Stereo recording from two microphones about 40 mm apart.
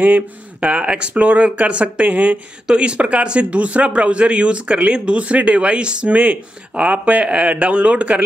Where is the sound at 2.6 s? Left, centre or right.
Right.